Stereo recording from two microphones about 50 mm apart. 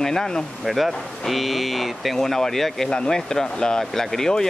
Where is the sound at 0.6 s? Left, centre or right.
Centre.